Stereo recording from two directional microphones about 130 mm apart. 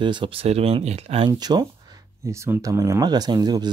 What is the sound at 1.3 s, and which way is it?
Speech, 30° right (ahead or behind).